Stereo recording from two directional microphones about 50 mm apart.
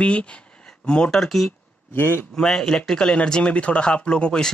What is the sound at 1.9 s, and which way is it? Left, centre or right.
Speech, left.